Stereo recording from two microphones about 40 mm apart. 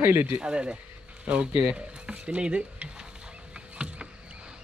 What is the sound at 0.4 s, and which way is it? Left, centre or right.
Speech, right.